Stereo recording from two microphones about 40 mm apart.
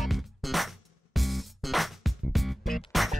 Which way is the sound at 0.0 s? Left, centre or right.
Centre.